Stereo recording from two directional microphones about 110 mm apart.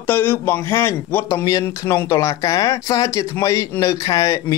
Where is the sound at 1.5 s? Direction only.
30° left (ahead or behind).